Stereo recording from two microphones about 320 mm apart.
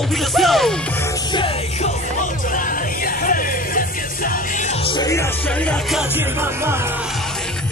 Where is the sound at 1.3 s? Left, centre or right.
Centre.